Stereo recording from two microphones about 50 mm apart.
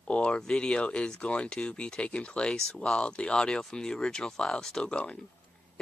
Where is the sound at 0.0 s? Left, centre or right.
Left.